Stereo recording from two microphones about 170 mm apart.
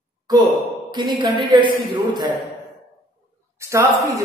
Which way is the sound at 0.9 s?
25° right (ahead or behind).